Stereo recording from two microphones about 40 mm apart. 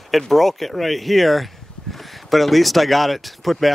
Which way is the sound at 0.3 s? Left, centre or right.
Centre.